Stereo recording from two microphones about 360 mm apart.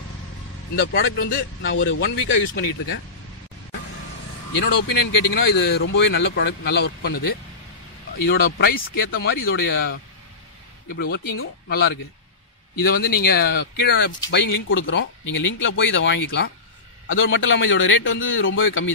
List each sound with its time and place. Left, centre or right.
0.7 s speech: left
4.8 s speech: left
5.3 s speech: left
8.2 s speech: left
15.2 s speech: left
15.6 s speech: left